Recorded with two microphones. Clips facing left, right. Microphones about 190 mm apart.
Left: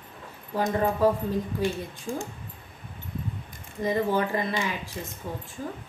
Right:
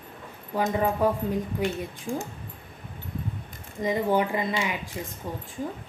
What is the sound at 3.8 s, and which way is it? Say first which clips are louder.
Speech: right 1 dB; 15° right (ahead or behind).